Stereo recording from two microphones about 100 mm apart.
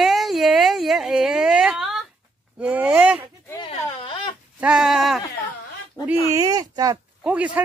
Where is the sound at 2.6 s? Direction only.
15° right (ahead or behind).